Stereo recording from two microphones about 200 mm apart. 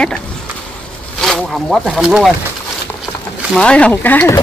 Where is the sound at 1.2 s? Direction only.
Centre (ahead or behind).